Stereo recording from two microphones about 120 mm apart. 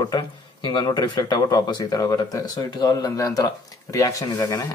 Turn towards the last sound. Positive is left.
turn(degrees=25)  # may be behind; listen again after turning